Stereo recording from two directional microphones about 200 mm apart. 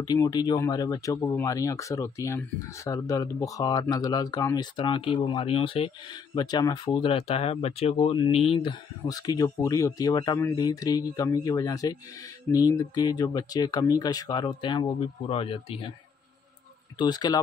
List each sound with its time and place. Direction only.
0.0 s speech: 20° left (ahead or behind)
17.0 s speech: 20° left (ahead or behind)